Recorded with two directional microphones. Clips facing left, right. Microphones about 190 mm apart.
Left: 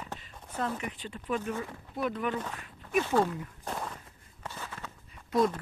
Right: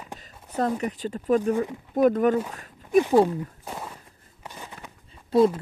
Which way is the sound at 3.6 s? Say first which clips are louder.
Even; 5° right (ahead or behind).